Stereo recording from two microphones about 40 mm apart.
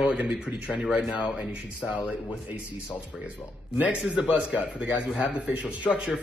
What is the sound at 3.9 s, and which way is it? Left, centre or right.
Speech, right.